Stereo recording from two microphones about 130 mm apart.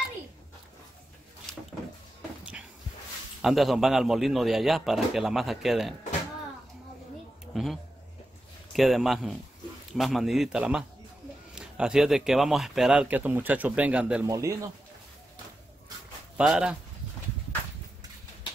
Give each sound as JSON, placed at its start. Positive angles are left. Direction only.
{"t": 1.5, "sound": "a sound", "side_deg": 5}
{"t": 3.4, "sound": "a man's voice", "side_deg": 0}
{"t": 7.5, "sound": "a man's voice", "side_deg": 0}
{"t": 14.2, "sound": "speech", "side_deg": -25}
{"t": 16.3, "sound": "speech", "side_deg": -5}